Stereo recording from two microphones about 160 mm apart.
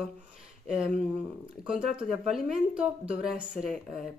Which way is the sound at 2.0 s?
Centre (ahead or behind).